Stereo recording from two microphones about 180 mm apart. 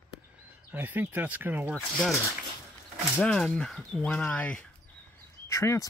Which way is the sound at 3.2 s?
5° left (ahead or behind).